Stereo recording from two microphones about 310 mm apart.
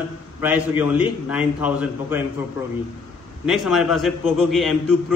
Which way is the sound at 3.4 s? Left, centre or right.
Centre.